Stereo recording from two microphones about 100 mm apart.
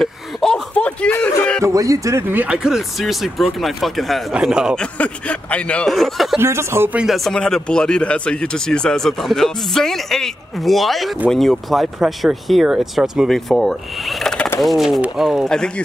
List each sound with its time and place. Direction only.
0.0 s a sound: 5° left (ahead or behind)
1.6 s speech: 35° right (ahead or behind)
2.3 s speech: 10° right (ahead or behind)
4.7 s speech: 10° left (ahead or behind)
5.9 s speech: centre (ahead or behind)
6.3 s speech: 25° right (ahead or behind)
7.2 s speech: 5° left (ahead or behind)